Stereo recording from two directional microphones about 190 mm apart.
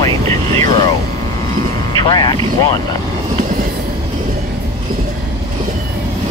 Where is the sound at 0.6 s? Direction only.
20° left (ahead or behind).